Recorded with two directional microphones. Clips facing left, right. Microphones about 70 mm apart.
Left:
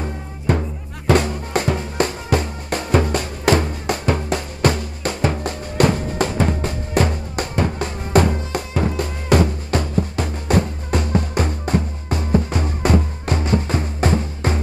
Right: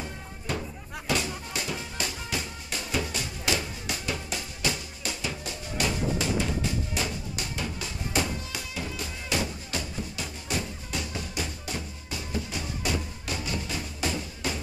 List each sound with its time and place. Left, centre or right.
0.0 s music: left